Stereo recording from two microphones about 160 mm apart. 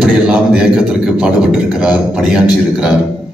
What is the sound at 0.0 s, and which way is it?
A man's voice, 5° right (ahead or behind).